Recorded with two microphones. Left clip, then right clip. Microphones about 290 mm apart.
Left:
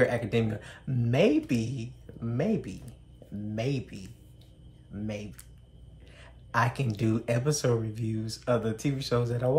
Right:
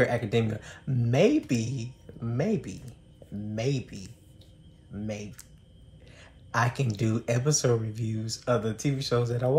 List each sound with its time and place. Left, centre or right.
0.0 s speech: centre